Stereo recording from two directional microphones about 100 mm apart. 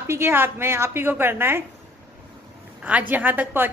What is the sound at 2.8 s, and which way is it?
Speech, 15° right (ahead or behind).